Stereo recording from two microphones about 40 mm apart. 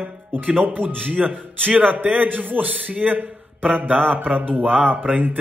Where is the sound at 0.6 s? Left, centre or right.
Right.